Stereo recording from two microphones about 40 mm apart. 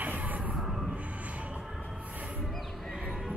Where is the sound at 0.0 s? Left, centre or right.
Right.